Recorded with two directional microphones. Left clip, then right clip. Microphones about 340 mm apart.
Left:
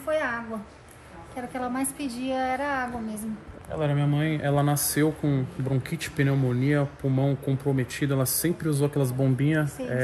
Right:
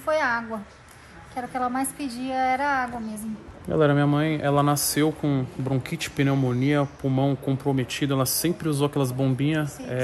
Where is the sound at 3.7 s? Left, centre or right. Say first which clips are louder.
Right 7 dB; right.